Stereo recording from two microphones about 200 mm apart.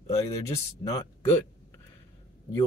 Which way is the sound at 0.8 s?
20° left (ahead or behind).